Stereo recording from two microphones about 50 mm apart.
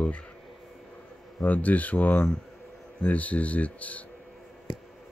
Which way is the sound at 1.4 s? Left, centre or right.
Left.